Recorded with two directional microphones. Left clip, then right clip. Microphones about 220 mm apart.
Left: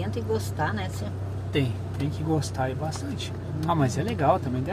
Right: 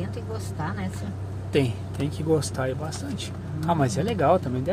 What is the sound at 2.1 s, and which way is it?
Speech, 20° right (ahead or behind).